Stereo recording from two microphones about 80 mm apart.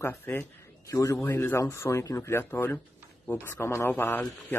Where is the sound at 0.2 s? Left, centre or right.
Left.